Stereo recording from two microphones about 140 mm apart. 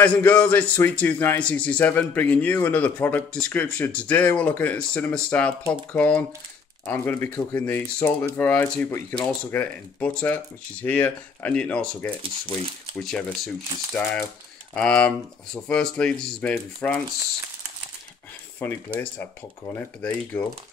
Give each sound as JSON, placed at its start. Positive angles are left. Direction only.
{"t": 0.0, "sound": "speech", "side_deg": 10}
{"t": 18.6, "sound": "speech", "side_deg": 15}